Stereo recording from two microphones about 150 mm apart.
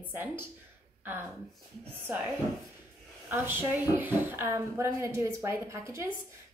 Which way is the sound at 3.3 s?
15° right (ahead or behind).